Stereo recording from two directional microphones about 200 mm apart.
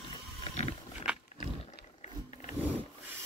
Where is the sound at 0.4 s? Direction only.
30° left (ahead or behind).